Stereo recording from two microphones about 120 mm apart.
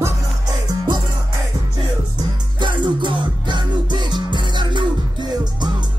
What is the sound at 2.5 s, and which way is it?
Music, 40° right (ahead or behind).